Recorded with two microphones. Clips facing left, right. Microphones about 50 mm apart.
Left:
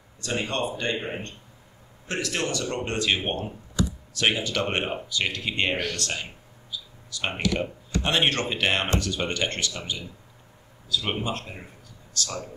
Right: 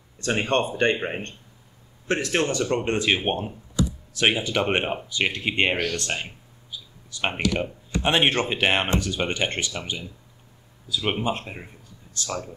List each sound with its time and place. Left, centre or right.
0.2 s speech: right